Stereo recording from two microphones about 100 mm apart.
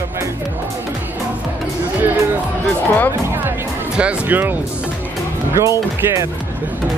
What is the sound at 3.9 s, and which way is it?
Speech, 15° right (ahead or behind).